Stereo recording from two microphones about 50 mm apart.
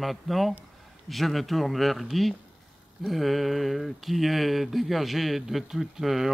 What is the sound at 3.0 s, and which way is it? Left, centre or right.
Speech, centre.